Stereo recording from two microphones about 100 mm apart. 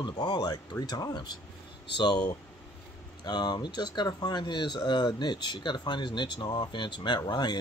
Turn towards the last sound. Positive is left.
turn(degrees=45)  # may be behind; listen again after turning